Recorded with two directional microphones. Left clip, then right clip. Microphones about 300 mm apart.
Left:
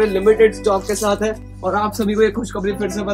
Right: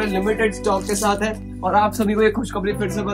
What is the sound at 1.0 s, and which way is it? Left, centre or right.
Speech, right.